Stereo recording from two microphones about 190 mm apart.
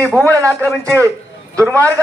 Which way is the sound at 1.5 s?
5° left (ahead or behind).